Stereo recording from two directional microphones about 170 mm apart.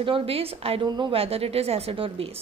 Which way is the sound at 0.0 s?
35° right (ahead or behind).